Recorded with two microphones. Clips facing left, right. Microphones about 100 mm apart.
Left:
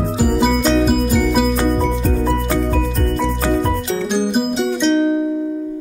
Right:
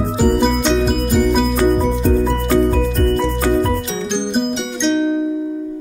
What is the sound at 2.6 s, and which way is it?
Music, centre (ahead or behind).